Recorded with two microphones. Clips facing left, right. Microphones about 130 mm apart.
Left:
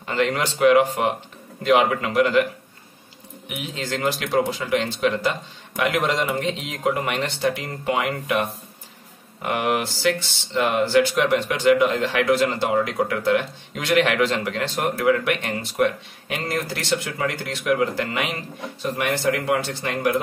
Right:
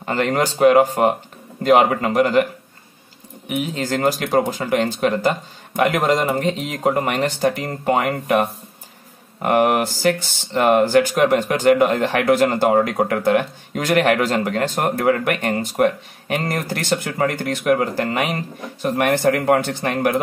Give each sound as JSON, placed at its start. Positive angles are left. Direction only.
{"t": 0.0, "sound": "speech", "side_deg": -45}
{"t": 3.4, "sound": "speech", "side_deg": -45}